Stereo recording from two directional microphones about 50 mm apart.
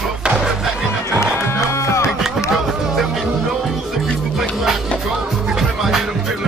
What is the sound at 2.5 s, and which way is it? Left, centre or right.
Music, centre.